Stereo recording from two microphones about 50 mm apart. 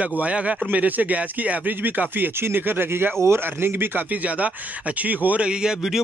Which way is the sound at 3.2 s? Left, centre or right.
Right.